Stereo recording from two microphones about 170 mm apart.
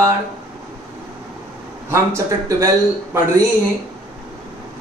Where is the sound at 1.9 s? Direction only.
15° right (ahead or behind).